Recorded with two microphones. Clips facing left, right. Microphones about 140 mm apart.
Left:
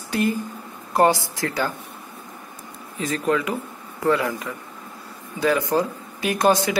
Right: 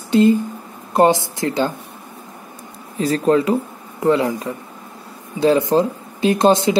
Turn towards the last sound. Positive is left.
turn(degrees=-25)  # may be behind; listen again after turning